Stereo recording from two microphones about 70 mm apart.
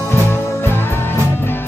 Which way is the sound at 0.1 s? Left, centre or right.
Left.